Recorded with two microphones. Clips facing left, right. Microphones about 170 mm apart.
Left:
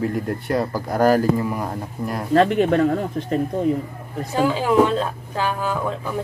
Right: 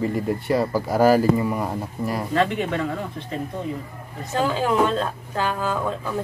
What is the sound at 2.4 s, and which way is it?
Speech, 40° left (ahead or behind).